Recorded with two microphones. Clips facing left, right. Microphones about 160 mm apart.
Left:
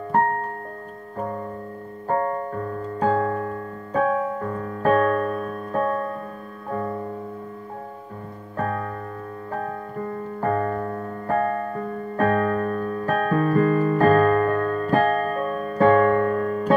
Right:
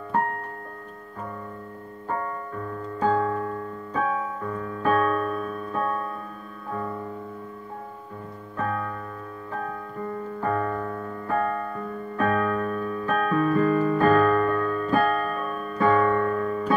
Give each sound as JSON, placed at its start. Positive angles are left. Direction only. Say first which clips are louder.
{"t": 2.0, "sound": "music", "louder": "left 7 dB", "side_deg": 45}
{"t": 8.5, "sound": "music", "louder": "left 2 dB", "side_deg": 40}